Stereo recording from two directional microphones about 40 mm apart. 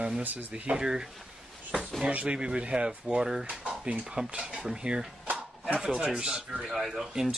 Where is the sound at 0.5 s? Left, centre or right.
Right.